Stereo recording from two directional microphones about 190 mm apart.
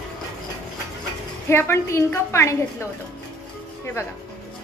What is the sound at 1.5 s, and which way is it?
A woman's voice, 15° left (ahead or behind).